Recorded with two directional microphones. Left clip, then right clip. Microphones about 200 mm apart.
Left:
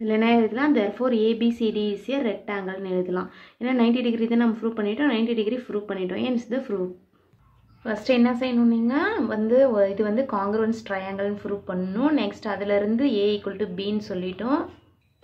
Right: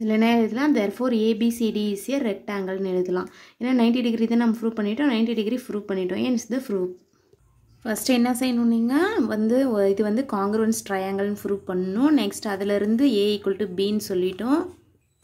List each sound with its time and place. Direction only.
0.0 s a woman's voice: 35° right (ahead or behind)
7.8 s a woman's voice: 40° right (ahead or behind)